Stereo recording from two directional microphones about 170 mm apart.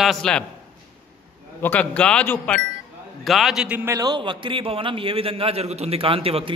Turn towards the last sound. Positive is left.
turn(degrees=-35)  # may be behind; listen again after turning